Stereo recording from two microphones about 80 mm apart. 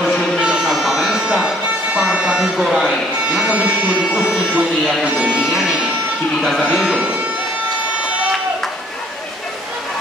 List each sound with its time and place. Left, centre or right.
0.0 s music: centre
3.3 s speech: centre